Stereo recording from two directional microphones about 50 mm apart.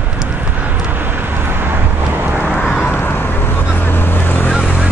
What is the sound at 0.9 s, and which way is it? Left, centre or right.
Vehicle, right.